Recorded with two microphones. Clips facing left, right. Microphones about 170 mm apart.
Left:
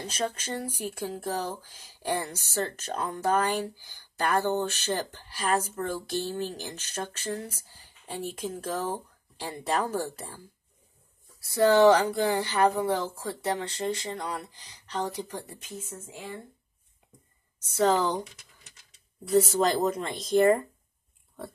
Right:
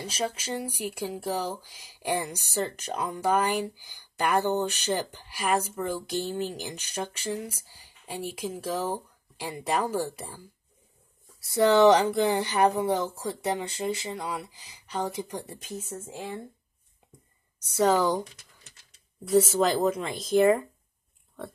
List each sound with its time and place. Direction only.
0.0 s speech: 10° right (ahead or behind)
11.5 s speech: 20° right (ahead or behind)
17.7 s speech: 10° right (ahead or behind)
19.2 s speech: centre (ahead or behind)